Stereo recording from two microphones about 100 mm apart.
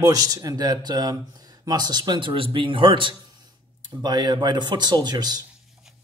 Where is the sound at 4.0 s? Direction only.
40° right (ahead or behind).